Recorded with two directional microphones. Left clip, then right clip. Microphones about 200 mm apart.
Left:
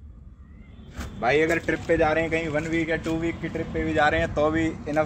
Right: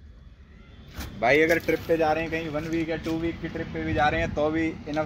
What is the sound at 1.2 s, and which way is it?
Speech, 50° right (ahead or behind).